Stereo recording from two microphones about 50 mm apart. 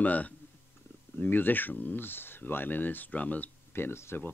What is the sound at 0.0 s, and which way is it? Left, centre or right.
Speech, left.